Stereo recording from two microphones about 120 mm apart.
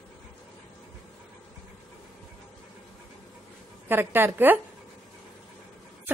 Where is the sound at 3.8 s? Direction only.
20° right (ahead or behind).